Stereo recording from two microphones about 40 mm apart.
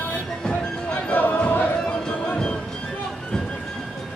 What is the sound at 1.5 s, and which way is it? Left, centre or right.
Music, left.